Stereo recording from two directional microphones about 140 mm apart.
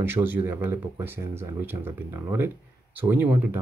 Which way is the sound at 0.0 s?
15° right (ahead or behind).